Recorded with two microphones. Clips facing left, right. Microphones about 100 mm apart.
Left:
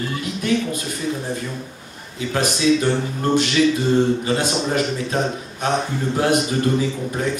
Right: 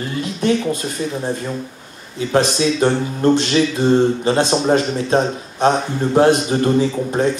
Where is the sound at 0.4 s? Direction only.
25° right (ahead or behind).